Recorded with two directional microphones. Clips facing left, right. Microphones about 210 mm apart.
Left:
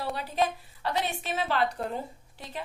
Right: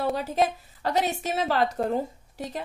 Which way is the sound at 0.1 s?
45° right (ahead or behind).